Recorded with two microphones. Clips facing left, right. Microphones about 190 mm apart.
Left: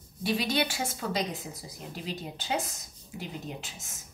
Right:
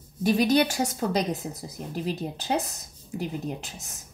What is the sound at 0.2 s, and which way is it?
A woman's voice, 45° right (ahead or behind).